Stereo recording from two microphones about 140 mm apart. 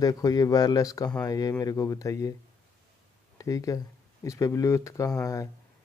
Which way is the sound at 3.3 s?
25° left (ahead or behind).